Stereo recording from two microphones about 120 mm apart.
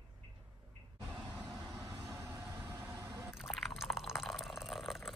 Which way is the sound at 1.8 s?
25° right (ahead or behind).